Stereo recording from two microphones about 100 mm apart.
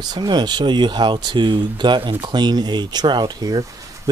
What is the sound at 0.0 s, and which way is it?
Speech, 45° right (ahead or behind).